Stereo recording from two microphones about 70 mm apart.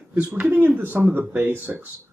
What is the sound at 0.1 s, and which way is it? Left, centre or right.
Speech, right.